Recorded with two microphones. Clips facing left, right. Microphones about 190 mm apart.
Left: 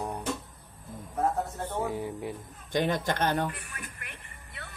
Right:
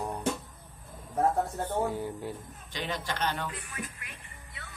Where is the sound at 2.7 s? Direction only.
50° left (ahead or behind).